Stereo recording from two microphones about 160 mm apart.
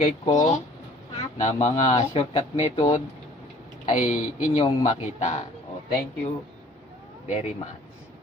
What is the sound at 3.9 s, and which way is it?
Speech, 50° left (ahead or behind).